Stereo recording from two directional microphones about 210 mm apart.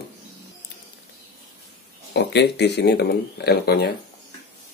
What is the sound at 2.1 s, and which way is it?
Speech, 55° left (ahead or behind).